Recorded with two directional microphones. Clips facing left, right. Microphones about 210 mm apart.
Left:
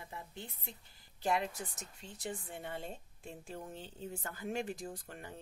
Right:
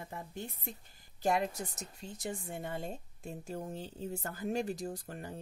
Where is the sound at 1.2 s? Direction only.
45° right (ahead or behind).